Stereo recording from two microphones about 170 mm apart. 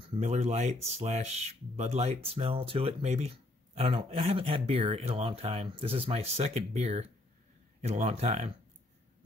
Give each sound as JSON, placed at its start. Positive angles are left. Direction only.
{"t": 0.0, "sound": "speech", "side_deg": -35}